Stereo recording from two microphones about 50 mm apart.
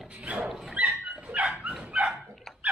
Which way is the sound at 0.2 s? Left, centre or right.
Right.